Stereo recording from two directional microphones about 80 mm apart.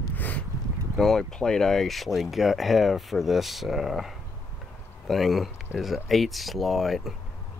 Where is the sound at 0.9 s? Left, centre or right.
Centre.